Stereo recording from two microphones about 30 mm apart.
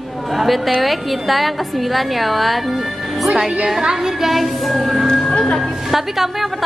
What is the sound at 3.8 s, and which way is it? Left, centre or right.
Music, right.